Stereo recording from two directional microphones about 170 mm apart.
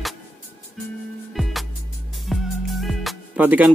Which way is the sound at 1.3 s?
Centre (ahead or behind).